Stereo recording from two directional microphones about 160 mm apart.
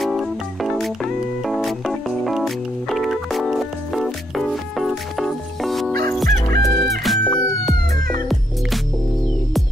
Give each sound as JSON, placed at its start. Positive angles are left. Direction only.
{"t": 0.0, "sound": "music", "side_deg": 0}
{"t": 6.2, "sound": "fowl", "side_deg": -75}
{"t": 7.0, "sound": "music", "side_deg": 0}